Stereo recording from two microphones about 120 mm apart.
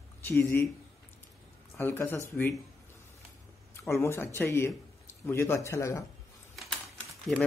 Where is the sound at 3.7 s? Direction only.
20° left (ahead or behind).